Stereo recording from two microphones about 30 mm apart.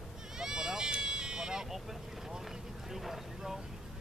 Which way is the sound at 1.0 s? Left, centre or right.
Right.